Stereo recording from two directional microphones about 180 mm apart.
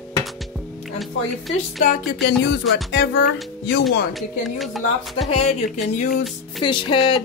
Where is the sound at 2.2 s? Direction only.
75° left (ahead or behind).